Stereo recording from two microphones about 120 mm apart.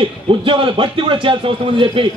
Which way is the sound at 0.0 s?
45° right (ahead or behind).